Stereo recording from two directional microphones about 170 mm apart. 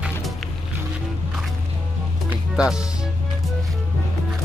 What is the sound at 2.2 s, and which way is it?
Music, 5° right (ahead or behind).